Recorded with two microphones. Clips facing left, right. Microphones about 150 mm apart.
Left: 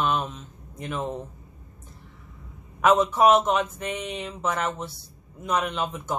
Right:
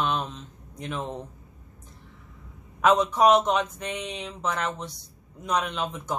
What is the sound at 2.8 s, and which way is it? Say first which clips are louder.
A woman's voice: left 1 dB; 5° left (ahead or behind).